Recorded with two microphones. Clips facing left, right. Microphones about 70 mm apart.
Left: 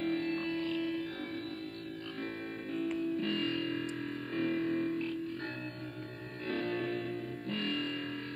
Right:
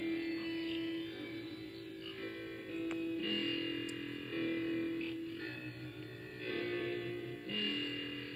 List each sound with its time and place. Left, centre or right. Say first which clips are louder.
0.0 s music: left 4 dB; left
2.7 s music: left 5 dB; left
6.4 s music: left 4 dB; left